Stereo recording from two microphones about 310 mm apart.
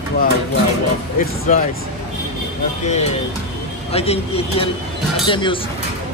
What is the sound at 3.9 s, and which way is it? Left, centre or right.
Speech, centre.